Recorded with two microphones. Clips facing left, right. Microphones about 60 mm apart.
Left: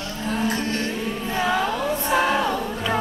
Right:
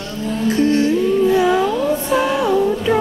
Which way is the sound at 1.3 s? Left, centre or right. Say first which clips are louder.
Right 7 dB; centre.